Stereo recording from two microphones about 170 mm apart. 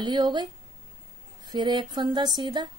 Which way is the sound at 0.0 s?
25° right (ahead or behind).